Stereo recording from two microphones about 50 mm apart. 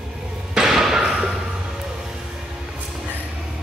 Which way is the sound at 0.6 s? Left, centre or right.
Centre.